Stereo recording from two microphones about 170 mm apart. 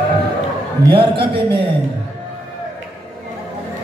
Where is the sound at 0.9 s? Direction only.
30° right (ahead or behind).